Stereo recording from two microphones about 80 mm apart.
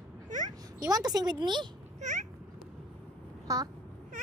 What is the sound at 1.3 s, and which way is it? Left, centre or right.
Speech, right.